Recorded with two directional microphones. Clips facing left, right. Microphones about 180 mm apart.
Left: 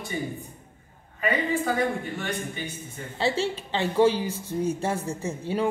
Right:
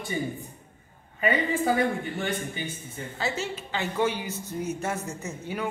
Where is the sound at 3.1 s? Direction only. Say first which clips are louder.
Left 5 dB; 30° left (ahead or behind).